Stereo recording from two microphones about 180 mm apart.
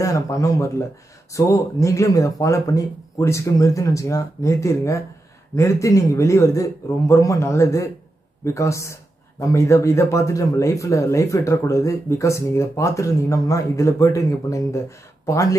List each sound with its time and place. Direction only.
0.0 s speech: 20° left (ahead or behind)